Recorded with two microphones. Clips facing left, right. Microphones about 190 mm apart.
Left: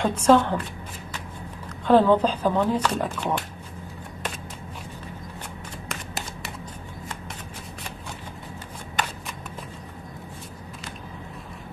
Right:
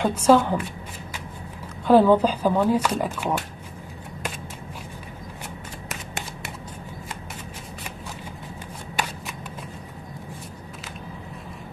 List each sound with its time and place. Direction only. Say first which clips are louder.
0.0 s speech: right 1 dB; 10° right (ahead or behind)
1.9 s speech: right 2 dB; 10° right (ahead or behind)